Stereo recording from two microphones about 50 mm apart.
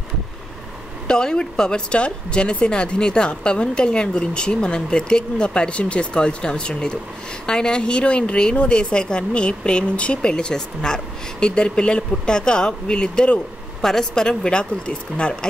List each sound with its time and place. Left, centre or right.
1.0 s speech: centre
13.7 s a woman's voice: centre